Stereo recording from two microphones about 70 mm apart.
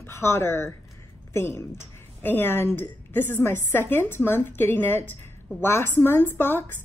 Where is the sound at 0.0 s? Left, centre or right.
Left.